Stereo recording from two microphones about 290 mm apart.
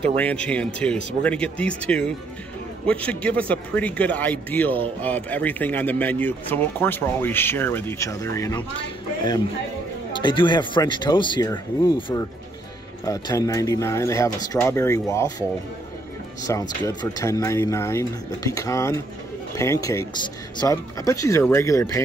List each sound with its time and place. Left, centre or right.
0.1 s speech: centre
16.4 s speech: centre